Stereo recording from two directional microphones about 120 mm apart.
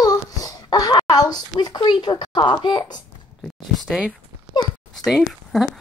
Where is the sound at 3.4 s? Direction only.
5° left (ahead or behind).